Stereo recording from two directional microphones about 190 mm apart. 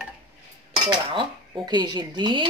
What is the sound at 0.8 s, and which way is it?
Dishes, 20° right (ahead or behind).